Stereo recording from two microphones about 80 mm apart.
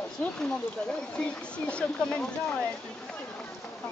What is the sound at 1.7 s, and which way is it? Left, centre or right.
Speech, centre.